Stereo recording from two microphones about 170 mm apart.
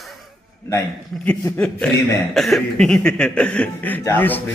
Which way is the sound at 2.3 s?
Centre (ahead or behind).